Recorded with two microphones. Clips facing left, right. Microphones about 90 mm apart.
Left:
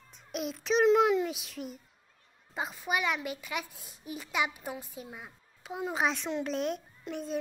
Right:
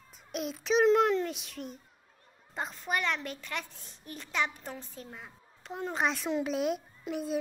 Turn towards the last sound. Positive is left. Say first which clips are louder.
# right 3 dB
turn(degrees=-5)  # may be behind; listen again after turning